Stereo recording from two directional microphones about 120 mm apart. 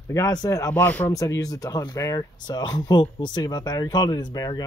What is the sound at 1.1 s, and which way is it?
Speech, 30° left (ahead or behind).